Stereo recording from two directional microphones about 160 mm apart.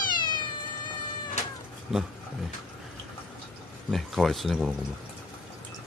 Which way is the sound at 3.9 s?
Centre (ahead or behind).